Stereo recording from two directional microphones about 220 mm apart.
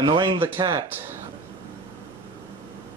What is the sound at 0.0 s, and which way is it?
Speech, 20° right (ahead or behind).